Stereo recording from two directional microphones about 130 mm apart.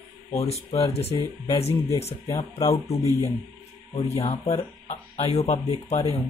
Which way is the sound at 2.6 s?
25° left (ahead or behind).